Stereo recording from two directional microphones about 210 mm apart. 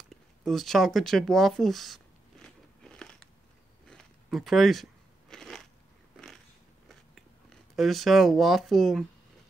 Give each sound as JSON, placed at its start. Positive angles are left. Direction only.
{"t": 0.1, "sound": "speech", "side_deg": 0}
{"t": 2.4, "sound": "biting", "side_deg": 5}
{"t": 3.8, "sound": "a sound", "side_deg": 0}
{"t": 5.3, "sound": "crushing", "side_deg": 0}
{"t": 6.1, "sound": "a sound", "side_deg": 0}
{"t": 6.9, "sound": "chewing", "side_deg": 0}